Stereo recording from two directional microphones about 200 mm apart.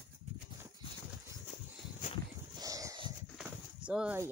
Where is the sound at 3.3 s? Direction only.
5° right (ahead or behind).